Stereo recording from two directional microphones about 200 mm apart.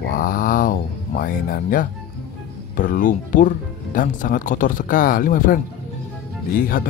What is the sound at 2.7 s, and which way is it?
Speech, 45° left (ahead or behind).